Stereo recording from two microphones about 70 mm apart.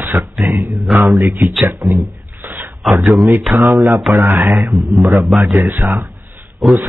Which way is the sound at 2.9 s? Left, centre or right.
Right.